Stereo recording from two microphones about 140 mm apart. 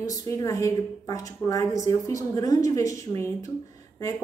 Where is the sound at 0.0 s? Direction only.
25° left (ahead or behind).